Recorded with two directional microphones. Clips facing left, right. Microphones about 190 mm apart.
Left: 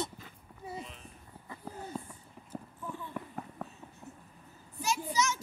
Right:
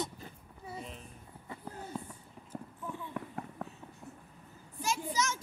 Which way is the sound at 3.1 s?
Centre (ahead or behind).